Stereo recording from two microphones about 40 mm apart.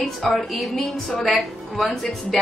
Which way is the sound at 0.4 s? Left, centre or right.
Centre.